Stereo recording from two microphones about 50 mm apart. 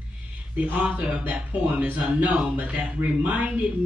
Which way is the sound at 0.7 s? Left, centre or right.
Right.